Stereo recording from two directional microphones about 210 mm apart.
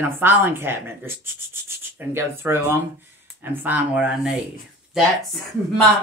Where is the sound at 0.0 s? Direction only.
10° right (ahead or behind).